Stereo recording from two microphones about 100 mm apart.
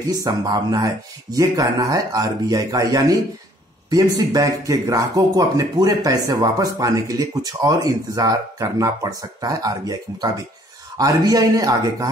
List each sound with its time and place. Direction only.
0.1 s speech: 35° right (ahead or behind)